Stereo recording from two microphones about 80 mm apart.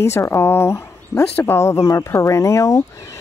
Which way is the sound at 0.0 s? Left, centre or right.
Left.